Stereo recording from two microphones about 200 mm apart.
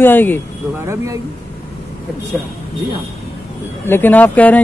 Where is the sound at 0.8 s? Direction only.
15° right (ahead or behind).